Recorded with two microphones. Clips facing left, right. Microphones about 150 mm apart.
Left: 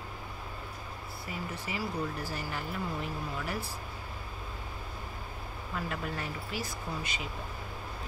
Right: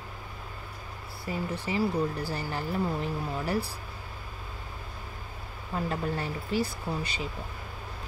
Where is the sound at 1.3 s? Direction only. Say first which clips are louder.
Right 7 dB; 30° right (ahead or behind).